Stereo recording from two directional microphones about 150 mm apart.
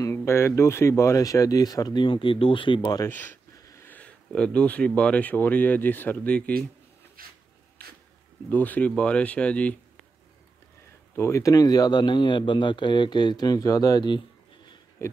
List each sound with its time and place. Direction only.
0.0 s speech: 15° left (ahead or behind)
3.1 s speech: 10° left (ahead or behind)
7.2 s a sound: 70° right (ahead or behind)
8.5 s speech: 10° left (ahead or behind)
11.1 s speech: 20° left (ahead or behind)
15.0 s heart sounds: 20° left (ahead or behind)